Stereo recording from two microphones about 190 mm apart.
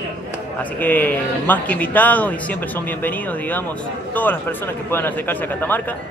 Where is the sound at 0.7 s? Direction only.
10° left (ahead or behind).